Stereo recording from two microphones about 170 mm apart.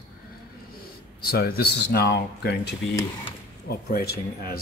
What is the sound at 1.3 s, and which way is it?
Speech, 65° left (ahead or behind).